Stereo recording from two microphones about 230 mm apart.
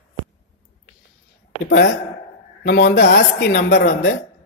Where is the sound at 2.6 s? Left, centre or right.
Left.